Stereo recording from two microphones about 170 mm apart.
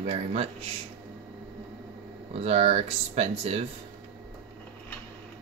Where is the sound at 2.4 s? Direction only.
40° right (ahead or behind).